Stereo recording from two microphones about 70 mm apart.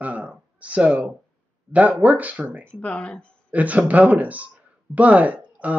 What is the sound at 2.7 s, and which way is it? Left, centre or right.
Speech, centre.